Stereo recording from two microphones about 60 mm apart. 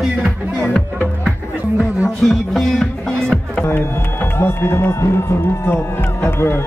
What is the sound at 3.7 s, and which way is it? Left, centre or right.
Speech, left.